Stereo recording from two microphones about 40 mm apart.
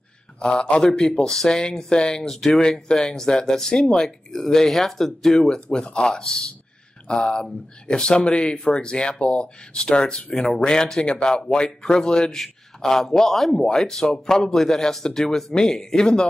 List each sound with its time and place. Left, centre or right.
0.4 s speech: left; by 5.5 s centre
5.5 s a man's voice: centre